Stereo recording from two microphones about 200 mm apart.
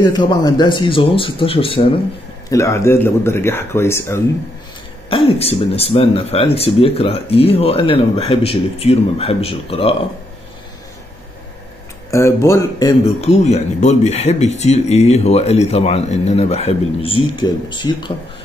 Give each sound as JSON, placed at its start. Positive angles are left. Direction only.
{"t": 0.0, "sound": "speech", "side_deg": 20}
{"t": 2.5, "sound": "speech", "side_deg": 15}
{"t": 5.1, "sound": "speech", "side_deg": 30}
{"t": 12.1, "sound": "speech", "side_deg": 15}
{"t": 13.0, "sound": "speech", "side_deg": 35}